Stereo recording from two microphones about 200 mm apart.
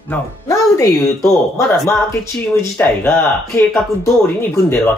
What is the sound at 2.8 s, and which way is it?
Speech, 10° left (ahead or behind).